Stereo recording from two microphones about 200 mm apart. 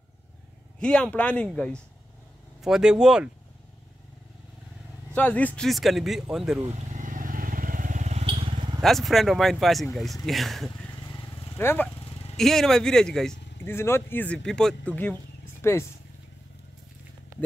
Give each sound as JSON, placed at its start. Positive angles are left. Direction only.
{"t": 0.7, "sound": "a man's voice", "side_deg": 5}
{"t": 5.1, "sound": "a man's voice", "side_deg": 5}
{"t": 6.6, "sound": "vehicle", "side_deg": -35}
{"t": 8.8, "sound": "a man's voice", "side_deg": 0}
{"t": 11.1, "sound": "vehicle", "side_deg": 20}
{"t": 11.5, "sound": "speech", "side_deg": 10}
{"t": 12.0, "sound": "vehicle", "side_deg": 30}
{"t": 12.4, "sound": "a man's voice", "side_deg": 0}